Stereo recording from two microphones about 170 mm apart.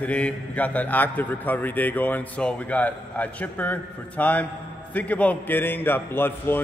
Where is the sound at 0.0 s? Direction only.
10° left (ahead or behind).